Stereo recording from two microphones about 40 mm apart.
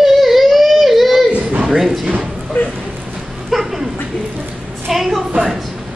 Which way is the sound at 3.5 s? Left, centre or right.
Centre.